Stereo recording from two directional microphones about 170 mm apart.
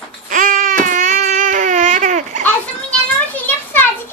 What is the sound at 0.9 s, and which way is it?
Baby cry, 50° right (ahead or behind).